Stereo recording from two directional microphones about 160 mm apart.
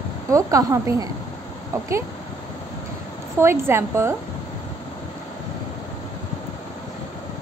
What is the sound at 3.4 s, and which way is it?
Speech, 15° right (ahead or behind).